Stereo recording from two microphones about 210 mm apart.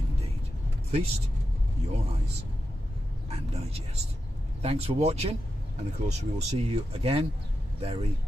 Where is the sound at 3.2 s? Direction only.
30° right (ahead or behind).